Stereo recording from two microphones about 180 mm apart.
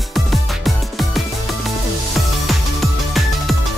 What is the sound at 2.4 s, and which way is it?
Music, centre (ahead or behind).